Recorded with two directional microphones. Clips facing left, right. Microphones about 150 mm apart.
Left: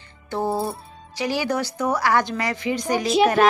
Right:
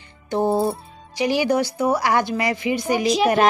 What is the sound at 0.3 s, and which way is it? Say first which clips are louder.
Speech: right 5 dB; 20° right (ahead or behind).